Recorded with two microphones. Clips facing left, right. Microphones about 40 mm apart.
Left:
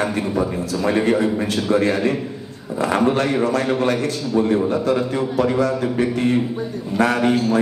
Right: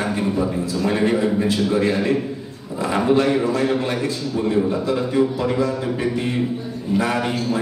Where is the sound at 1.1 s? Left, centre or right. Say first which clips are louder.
Even; left.